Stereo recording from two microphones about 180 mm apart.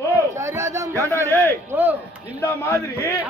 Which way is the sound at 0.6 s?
15° right (ahead or behind).